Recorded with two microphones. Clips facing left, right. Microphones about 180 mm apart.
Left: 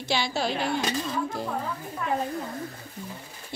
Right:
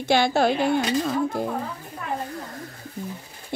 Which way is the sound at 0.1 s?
55° right (ahead or behind).